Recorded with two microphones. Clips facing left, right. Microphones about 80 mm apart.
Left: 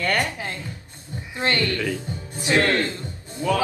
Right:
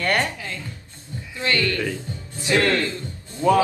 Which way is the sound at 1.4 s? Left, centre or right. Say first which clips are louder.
Even; left.